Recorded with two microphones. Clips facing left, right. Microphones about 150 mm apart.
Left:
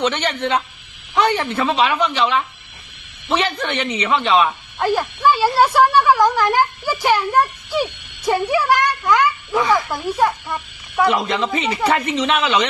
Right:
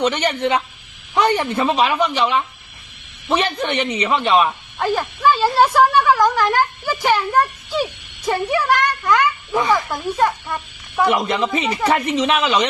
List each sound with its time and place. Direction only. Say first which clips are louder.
0.0 s speech: right 2 dB; 10° right (ahead or behind)
4.8 s speech: left 1 dB; 10° left (ahead or behind)
9.5 s speech: even; 15° right (ahead or behind)
9.8 s speech: even; 5° left (ahead or behind)
11.0 s speech: even; 15° right (ahead or behind)
12.1 s speech: right 1 dB; centre (ahead or behind)